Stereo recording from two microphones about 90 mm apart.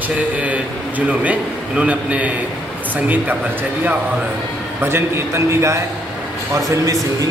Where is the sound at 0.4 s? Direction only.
15° right (ahead or behind).